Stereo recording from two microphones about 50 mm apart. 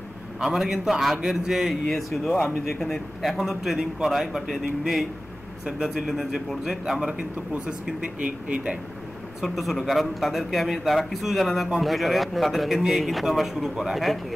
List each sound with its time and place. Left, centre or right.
0.4 s speech: centre
9.4 s speech: centre